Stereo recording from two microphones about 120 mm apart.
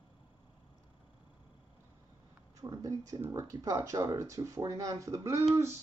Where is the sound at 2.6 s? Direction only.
30° right (ahead or behind).